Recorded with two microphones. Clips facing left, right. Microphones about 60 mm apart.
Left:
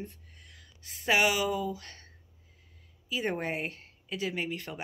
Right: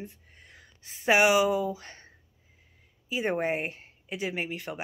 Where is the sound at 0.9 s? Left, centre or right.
Right.